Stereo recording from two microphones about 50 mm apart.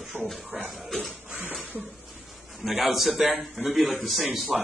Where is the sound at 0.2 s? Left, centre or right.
Left.